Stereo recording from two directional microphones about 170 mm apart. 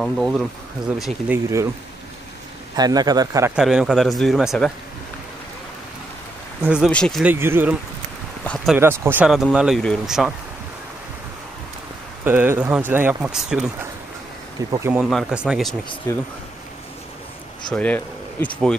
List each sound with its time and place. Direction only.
0.0 s speech: centre (ahead or behind)
1.3 s speech: 15° right (ahead or behind)
2.7 s speech: 25° right (ahead or behind)
3.5 s speech: 5° right (ahead or behind)
6.6 s speech: 5° right (ahead or behind)
7.2 s speech: 15° right (ahead or behind)
8.7 s speech: 10° right (ahead or behind)
12.3 s speech: 10° right (ahead or behind)
14.7 s speech: 15° right (ahead or behind)
15.0 s speech: 5° right (ahead or behind)
16.1 s speech: 20° left (ahead or behind)
17.7 s speech: 10° left (ahead or behind)